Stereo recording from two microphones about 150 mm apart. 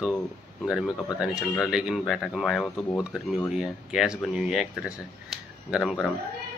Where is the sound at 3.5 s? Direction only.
5° right (ahead or behind).